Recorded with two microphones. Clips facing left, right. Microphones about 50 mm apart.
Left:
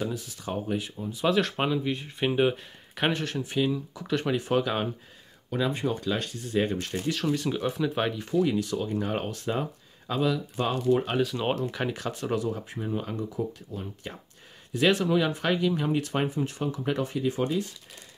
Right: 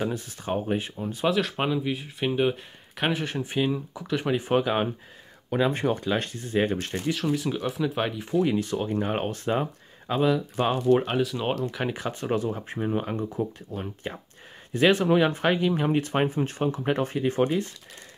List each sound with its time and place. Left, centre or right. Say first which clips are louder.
0.0 s speech: right 2 dB; right
0.9 s speech: right 3 dB; right
1.2 s speech: even; centre
2.5 s speech: left 1 dB; centre
3.3 s speech: right 1 dB; right
4.0 s speech: right 1 dB; centre
4.4 s speech: right 3 dB; right
5.7 s speech: right 3 dB; right
5.9 s speech: right 2 dB; right
7.2 s speech: right 1 dB; centre
8.5 s speech: right 2 dB; right
11.1 s speech: right 1 dB; centre
11.9 s speech: right 2 dB; right
14.7 s speech: right 3 dB; right